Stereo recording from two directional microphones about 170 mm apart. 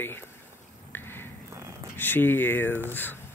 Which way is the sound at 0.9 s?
15° left (ahead or behind).